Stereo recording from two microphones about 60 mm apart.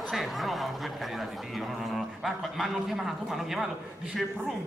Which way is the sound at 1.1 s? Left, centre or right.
Centre.